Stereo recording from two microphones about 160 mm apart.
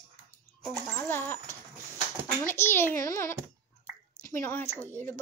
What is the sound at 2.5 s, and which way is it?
A woman's voice, 15° left (ahead or behind).